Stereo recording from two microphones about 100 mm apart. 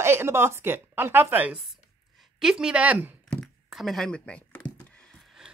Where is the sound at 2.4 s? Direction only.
10° right (ahead or behind).